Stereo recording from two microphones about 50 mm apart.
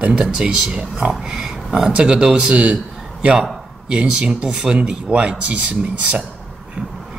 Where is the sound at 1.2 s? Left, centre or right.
Centre.